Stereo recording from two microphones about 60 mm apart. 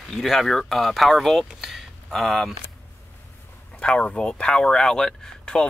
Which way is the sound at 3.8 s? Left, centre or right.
Centre.